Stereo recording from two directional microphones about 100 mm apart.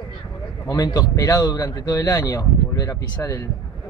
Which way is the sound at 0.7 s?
35° left (ahead or behind).